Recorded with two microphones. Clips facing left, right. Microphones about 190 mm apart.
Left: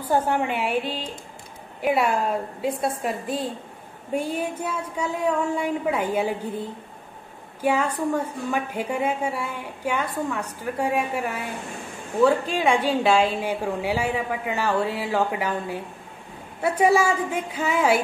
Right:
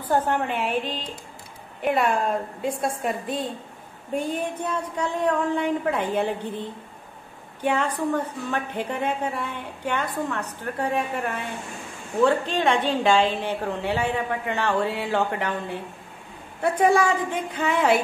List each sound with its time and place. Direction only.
0.1 s a woman's voice: 10° left (ahead or behind)
7.6 s a woman's voice: 5° left (ahead or behind)